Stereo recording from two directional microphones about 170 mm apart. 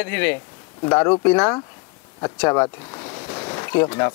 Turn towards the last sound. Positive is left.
turn(degrees=15)  # may be behind; listen again after turning